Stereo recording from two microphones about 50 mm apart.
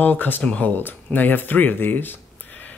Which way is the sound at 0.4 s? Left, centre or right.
Left.